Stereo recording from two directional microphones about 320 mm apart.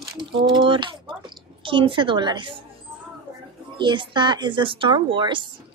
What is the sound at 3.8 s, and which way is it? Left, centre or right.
A woman's voice, centre.